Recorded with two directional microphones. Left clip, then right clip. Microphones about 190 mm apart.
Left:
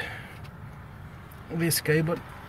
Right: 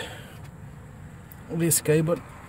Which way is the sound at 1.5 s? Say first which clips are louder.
Right 2 dB; 20° right (ahead or behind).